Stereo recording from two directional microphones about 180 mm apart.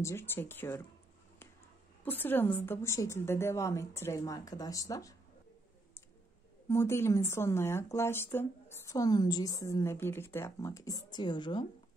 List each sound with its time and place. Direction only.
0.0 s speech: 15° left (ahead or behind)
2.0 s speech: 10° left (ahead or behind)
6.7 s speech: 15° left (ahead or behind)